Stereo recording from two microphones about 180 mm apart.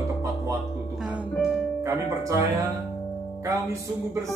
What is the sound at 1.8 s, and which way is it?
Speech, 15° right (ahead or behind).